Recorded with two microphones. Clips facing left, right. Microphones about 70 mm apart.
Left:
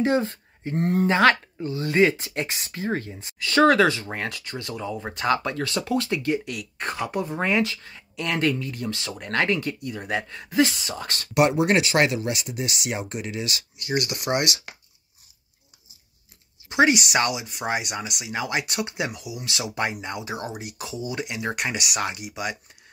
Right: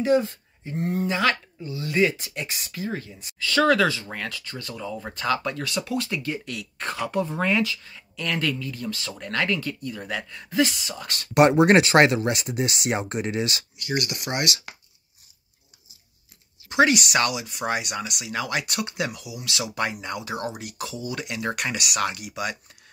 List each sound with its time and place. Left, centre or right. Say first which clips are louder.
0.0 s speech: right 1 dB; left
0.7 s speech: left 4 dB; left
1.0 s speech: left 7 dB; left
6.0 s speech: left 5 dB; left
7.4 s speech: even; left
11.3 s speech: right 4 dB; right
16.6 s speech: even; centre